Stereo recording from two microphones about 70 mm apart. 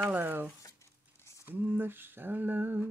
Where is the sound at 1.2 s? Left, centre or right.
Left.